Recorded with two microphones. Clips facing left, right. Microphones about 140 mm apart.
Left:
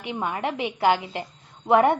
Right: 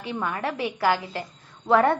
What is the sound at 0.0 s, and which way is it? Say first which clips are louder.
A woman's voice: left 1 dB; 20° left (ahead or behind).